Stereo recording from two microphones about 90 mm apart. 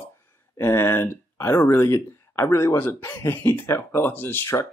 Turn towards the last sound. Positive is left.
turn(degrees=30)  # may be behind; listen again after turning